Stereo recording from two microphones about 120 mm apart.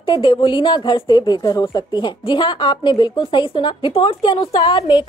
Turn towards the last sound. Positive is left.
turn(degrees=40)  # may be behind; listen again after turning